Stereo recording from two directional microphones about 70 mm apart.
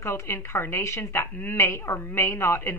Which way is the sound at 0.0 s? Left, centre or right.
Left.